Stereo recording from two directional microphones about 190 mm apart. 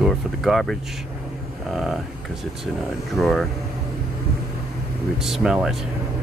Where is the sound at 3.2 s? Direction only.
Centre (ahead or behind).